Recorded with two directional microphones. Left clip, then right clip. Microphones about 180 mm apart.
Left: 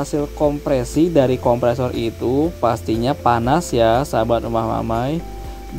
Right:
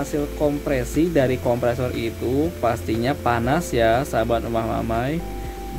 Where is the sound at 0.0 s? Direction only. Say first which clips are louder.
Left 4 dB; 25° left (ahead or behind).